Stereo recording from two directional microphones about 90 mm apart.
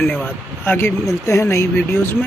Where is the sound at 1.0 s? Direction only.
35° left (ahead or behind).